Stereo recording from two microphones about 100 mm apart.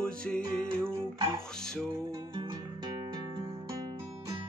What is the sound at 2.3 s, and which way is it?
Music, 50° right (ahead or behind).